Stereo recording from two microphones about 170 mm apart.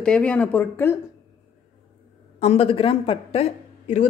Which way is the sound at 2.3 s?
35° left (ahead or behind).